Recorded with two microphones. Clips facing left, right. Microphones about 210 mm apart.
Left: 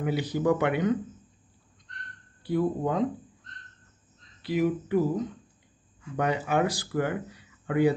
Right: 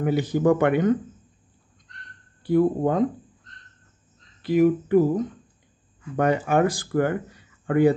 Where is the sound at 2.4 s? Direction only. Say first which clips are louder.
Right 6 dB; 50° right (ahead or behind).